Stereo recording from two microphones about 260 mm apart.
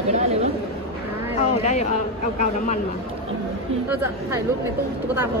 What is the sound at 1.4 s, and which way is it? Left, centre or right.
Speech, left.